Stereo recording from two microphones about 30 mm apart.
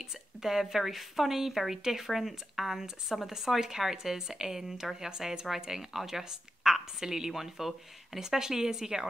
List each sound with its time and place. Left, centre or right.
0.0 s a woman's voice: centre
5.5 s a woman's voice: centre
8.2 s a woman's voice: centre